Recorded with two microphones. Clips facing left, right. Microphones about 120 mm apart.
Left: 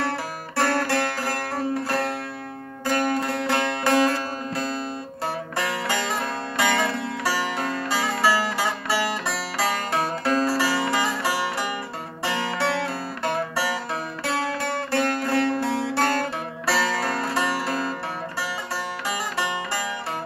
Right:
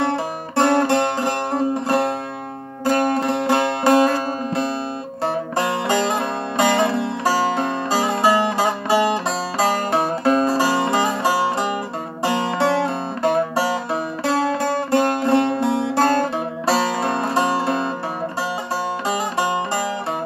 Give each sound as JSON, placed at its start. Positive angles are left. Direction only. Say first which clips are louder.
{"t": 0.6, "sound": "music", "louder": "right 6 dB", "side_deg": -20}
{"t": 19.0, "sound": "music", "louder": "right 6 dB", "side_deg": -30}